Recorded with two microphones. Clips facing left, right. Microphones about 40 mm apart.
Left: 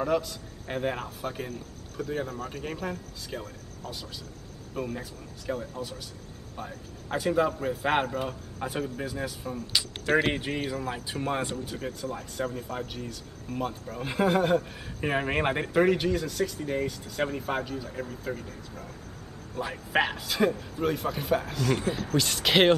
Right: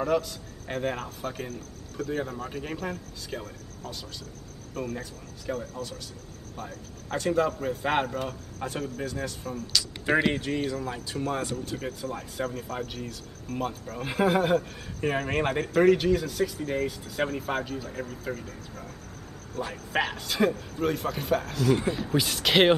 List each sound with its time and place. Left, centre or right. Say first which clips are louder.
0.0 s speech: right 1 dB; centre
4.7 s speech: even; centre; by 11.6 s left
11.7 s speech: right 1 dB; centre
15.0 s speech: even; centre
21.7 s speech: right 1 dB; centre